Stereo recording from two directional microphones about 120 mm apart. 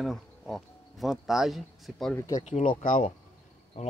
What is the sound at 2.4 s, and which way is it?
Speech, 70° left (ahead or behind).